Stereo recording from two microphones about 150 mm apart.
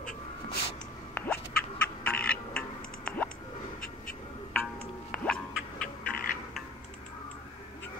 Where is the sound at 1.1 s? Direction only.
10° left (ahead or behind).